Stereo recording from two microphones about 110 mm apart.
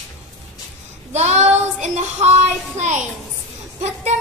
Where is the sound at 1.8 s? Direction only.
90° right.